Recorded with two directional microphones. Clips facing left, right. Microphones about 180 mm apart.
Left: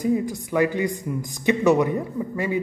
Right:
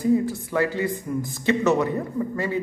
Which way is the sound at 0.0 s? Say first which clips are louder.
Right 2 dB; 15° left (ahead or behind).